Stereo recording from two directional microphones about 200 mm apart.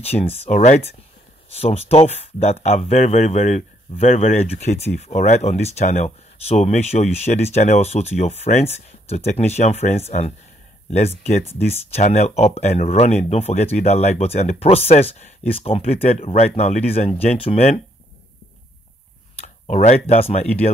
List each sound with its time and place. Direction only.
0.0 s speech: 30° left (ahead or behind)
19.4 s speech: 35° left (ahead or behind)